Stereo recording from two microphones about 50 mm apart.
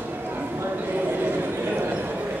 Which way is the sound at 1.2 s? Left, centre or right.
Right.